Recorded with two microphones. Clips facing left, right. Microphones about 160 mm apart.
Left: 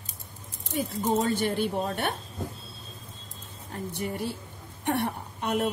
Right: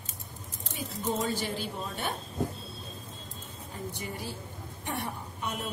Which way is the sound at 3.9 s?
60° left (ahead or behind).